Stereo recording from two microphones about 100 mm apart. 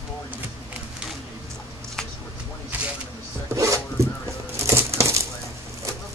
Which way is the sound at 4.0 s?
30° right (ahead or behind).